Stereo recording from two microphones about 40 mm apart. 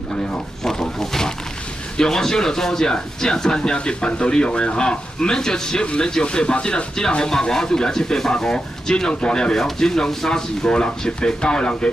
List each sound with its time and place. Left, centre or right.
0.7 s wild animals: centre
2.0 s speech: centre
10.7 s speech: left